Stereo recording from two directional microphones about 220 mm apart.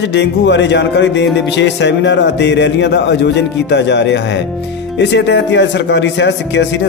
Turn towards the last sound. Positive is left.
turn(degrees=55)  # may be behind; listen again after turning